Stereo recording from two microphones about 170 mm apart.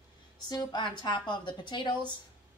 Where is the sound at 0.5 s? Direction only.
25° left (ahead or behind).